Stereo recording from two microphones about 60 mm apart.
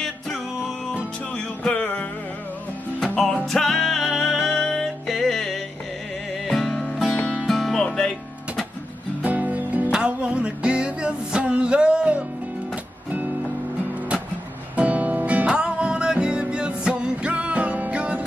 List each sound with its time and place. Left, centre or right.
0.0 s music: centre
1.3 s music: centre
3.2 s music: centre
7.2 s music: centre
7.4 s music: centre
9.2 s music: right
14.8 s music: right